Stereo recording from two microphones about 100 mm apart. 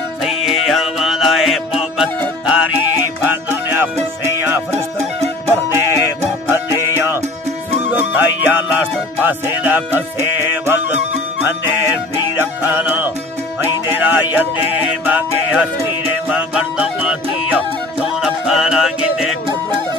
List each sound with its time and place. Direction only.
0.2 s music: centre (ahead or behind)
3.3 s music: 20° right (ahead or behind)
12.4 s music: 20° right (ahead or behind); by 19.3 s 5° right (ahead or behind)